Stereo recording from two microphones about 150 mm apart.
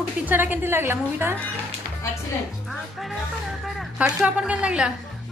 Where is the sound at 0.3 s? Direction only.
10° right (ahead or behind).